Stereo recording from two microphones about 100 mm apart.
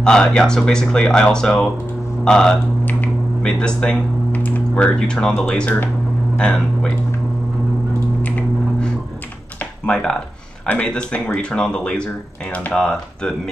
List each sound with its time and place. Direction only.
0.0 s speech: 5° left (ahead or behind)
8.2 s a sound: 15° left (ahead or behind)
10.6 s speech: 10° left (ahead or behind)